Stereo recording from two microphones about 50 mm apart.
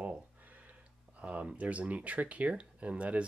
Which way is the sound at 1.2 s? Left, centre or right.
Right.